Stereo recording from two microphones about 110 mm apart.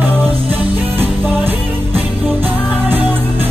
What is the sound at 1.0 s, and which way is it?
Music, 15° right (ahead or behind).